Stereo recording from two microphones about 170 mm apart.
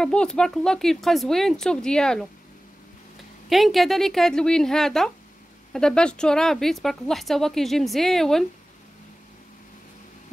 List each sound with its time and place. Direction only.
0.0 s a woman's voice: 5° left (ahead or behind)
3.4 s a woman's voice: centre (ahead or behind)